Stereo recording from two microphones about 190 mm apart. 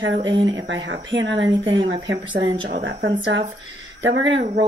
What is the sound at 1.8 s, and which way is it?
Speech, 25° right (ahead or behind).